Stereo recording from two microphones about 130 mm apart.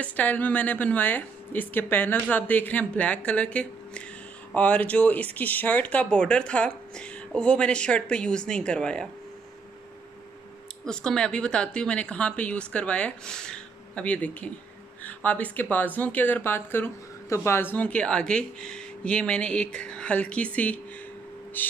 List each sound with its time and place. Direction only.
0.0 s speech: 15° left (ahead or behind)
10.9 s speech: 5° left (ahead or behind)